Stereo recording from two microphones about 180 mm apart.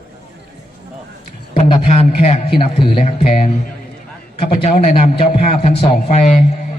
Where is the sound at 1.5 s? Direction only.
30° left (ahead or behind).